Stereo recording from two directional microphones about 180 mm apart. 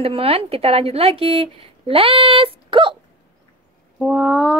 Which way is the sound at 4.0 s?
5° right (ahead or behind).